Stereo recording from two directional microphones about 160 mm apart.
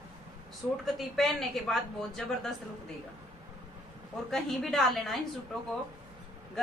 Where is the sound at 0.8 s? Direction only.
Centre (ahead or behind).